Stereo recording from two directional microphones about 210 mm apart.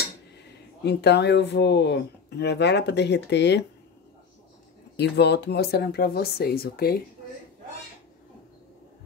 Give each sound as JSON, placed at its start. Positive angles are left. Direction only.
{"t": 0.8, "sound": "speech", "side_deg": 55}
{"t": 4.9, "sound": "speech", "side_deg": 55}